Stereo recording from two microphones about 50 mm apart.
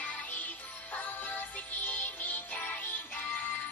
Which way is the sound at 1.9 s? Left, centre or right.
Left.